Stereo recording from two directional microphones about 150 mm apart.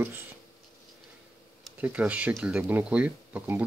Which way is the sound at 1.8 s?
10° right (ahead or behind).